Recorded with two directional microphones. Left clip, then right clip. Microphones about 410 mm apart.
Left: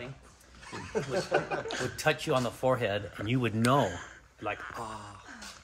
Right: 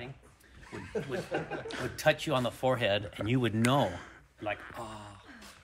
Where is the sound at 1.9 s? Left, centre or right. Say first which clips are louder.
Right 1 dB; centre.